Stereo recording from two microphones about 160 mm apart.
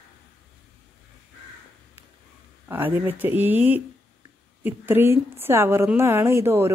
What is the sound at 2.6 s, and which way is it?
A woman's voice, 15° right (ahead or behind).